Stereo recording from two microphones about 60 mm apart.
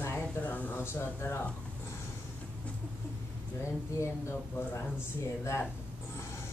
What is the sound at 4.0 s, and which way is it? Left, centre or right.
Speech, left.